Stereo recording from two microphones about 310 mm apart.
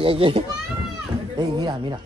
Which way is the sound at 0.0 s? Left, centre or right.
Centre.